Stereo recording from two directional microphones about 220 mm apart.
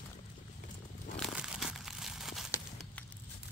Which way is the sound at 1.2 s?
Centre (ahead or behind).